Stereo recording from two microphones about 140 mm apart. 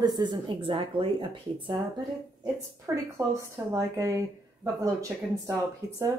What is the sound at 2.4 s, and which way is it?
Speech, 25° right (ahead or behind).